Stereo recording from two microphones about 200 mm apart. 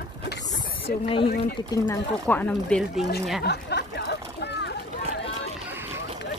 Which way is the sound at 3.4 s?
55° left (ahead or behind).